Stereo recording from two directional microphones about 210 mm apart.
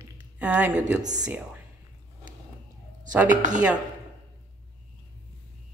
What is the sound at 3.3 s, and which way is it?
Speech, 35° right (ahead or behind).